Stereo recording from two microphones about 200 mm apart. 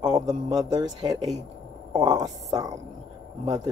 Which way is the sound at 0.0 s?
20° right (ahead or behind).